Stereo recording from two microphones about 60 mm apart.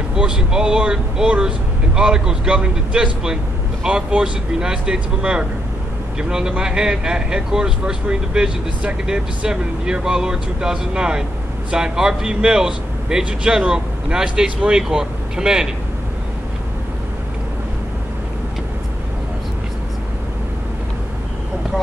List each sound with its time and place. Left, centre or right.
0.1 s speech: centre